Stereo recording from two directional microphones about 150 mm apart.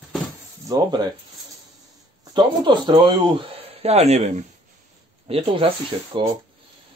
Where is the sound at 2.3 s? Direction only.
30° right (ahead or behind); by 4.4 s 45° right (ahead or behind).